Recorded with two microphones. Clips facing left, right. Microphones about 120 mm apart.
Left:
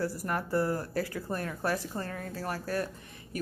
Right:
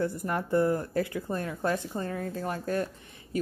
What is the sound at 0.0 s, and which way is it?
Speech, 25° right (ahead or behind).